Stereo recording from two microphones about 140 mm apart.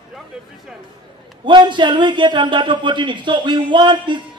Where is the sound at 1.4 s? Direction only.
35° right (ahead or behind).